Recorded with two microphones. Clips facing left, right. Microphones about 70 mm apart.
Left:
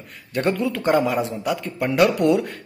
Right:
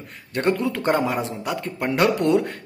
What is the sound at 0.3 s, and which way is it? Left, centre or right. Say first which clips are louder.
A man's voice: even; right.